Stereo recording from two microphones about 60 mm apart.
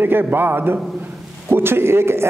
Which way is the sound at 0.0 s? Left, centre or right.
Right.